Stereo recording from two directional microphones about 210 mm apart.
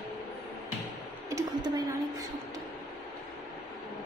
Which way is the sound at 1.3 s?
15° right (ahead or behind).